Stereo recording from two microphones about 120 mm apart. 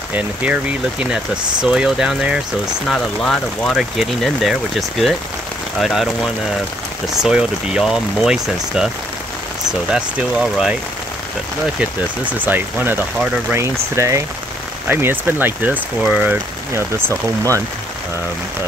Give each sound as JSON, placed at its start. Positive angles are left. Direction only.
{"t": 0.1, "sound": "speech", "side_deg": -10}
{"t": 12.4, "sound": "speech", "side_deg": -15}